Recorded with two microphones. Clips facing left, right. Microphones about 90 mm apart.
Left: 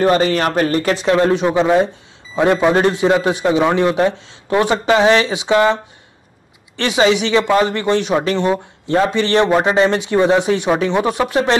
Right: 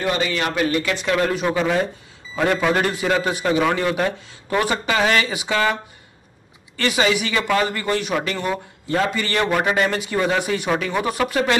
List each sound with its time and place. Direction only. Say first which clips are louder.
0.0 s speech: left 8 dB; 40° left (ahead or behind)
1.0 s speech: left 7 dB; 30° left (ahead or behind)
6.8 s speech: left 5 dB; 25° left (ahead or behind)